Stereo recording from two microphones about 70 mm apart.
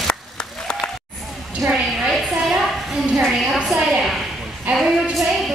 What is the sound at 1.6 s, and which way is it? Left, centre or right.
Speech, right.